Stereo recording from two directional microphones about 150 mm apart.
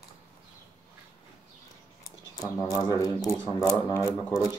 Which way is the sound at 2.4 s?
20° left (ahead or behind).